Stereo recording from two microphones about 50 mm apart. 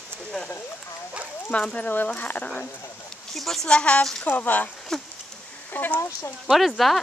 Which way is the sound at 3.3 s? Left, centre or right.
Centre.